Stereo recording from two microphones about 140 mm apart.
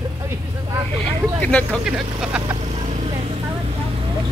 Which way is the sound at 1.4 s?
10° left (ahead or behind).